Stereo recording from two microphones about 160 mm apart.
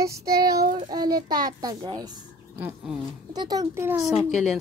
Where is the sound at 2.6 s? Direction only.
5° right (ahead or behind).